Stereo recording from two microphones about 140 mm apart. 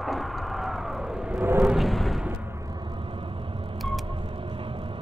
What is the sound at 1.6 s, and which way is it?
Vehicle, centre (ahead or behind).